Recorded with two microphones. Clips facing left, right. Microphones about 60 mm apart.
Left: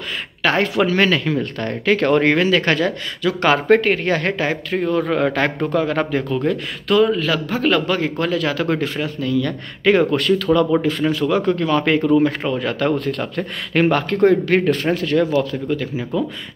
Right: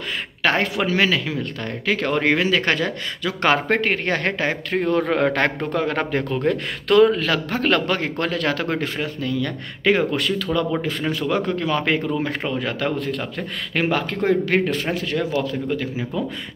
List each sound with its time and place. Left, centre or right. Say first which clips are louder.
0.4 s speech: left 2 dB; right
0.9 s speech: left 3 dB; centre
2.3 s speech: left 3 dB; right
6.5 s a man's voice: right 3 dB; right
8.6 s speech: left 3 dB; right
9.8 s speech: left 4 dB; centre
10.9 s speech: left 4 dB; right
12.8 s speech: left 4 dB; centre
14.4 s speech: left 4 dB; centre